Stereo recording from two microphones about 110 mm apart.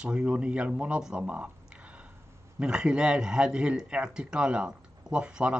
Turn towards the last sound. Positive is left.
turn(degrees=-10)  # may be behind; listen again after turning